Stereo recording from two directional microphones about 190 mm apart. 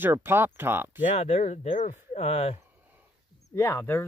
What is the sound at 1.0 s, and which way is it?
Speech, 35° left (ahead or behind).